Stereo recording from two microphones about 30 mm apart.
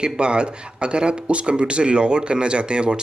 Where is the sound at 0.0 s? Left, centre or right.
Right.